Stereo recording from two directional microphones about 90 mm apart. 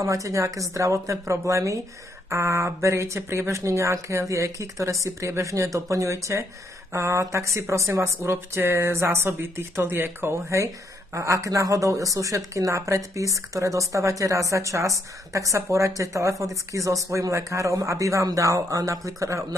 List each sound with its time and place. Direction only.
0.0 s speech: 35° right (ahead or behind)